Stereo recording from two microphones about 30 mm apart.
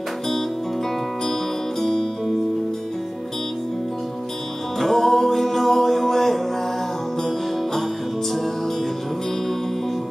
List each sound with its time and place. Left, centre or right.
1.8 s music: centre
4.7 s music: centre